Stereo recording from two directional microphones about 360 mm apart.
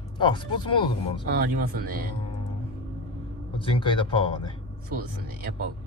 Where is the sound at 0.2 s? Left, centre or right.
Centre.